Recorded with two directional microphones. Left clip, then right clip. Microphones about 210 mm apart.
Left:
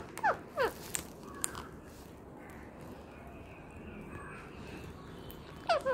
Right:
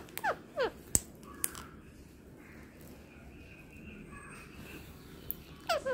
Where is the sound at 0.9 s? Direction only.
15° right (ahead or behind).